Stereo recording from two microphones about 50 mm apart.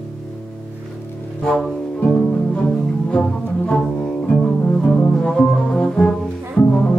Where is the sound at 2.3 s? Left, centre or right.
Left.